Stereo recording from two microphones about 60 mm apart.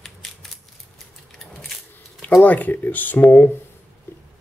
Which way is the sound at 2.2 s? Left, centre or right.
Left.